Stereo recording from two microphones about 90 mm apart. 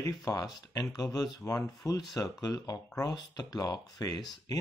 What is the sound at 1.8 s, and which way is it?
Speech, 50° left (ahead or behind).